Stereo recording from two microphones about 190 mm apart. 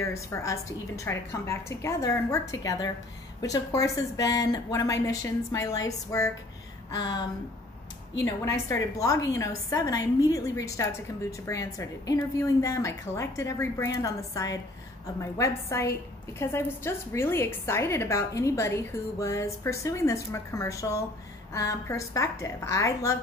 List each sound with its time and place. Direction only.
0.0 s a woman's voice: 15° left (ahead or behind)